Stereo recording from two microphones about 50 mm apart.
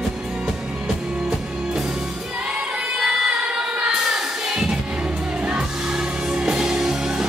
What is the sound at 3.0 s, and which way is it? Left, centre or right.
Singing, centre.